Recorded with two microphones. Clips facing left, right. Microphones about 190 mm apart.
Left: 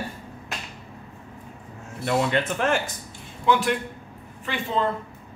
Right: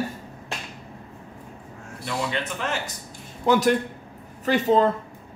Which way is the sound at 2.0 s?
55° left (ahead or behind).